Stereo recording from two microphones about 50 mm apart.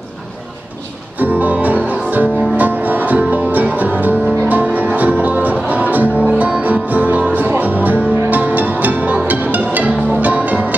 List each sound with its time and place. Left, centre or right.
1.2 s music: right